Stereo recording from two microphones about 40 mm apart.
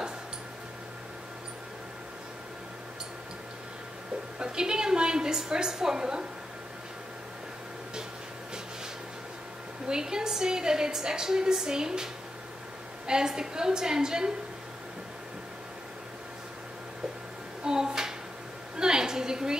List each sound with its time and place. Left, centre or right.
4.4 s a woman's voice: centre
9.8 s a woman's voice: centre
17.6 s a sound: centre